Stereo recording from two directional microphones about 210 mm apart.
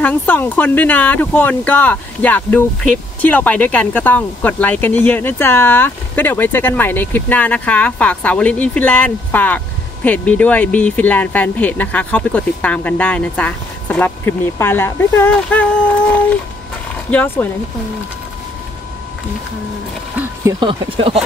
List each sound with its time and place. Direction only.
0.0 s speech: 10° left (ahead or behind)
17.1 s speech: 5° left (ahead or behind)
20.6 s speech: 25° right (ahead or behind)